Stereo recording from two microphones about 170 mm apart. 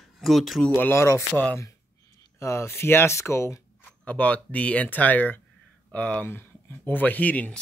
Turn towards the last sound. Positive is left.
turn(degrees=10)  # may be behind; listen again after turning